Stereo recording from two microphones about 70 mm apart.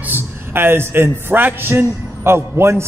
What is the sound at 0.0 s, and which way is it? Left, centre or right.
A man's voice, right.